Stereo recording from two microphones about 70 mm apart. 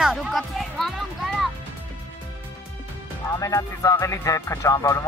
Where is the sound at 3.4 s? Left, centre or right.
Left.